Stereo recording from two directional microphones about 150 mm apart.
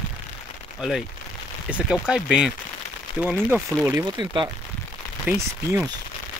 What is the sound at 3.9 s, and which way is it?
Speech, 30° right (ahead or behind).